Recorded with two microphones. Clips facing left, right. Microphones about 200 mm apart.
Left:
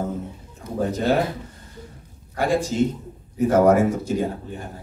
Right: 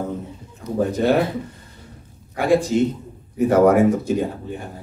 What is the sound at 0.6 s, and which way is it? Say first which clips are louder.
Speech: right 4 dB; 55° left (ahead or behind).